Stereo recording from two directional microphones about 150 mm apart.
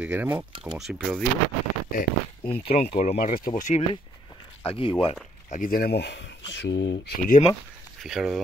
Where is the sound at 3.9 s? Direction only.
35° left (ahead or behind).